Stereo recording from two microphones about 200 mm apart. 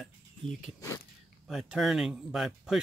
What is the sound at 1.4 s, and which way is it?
Speech, centre (ahead or behind).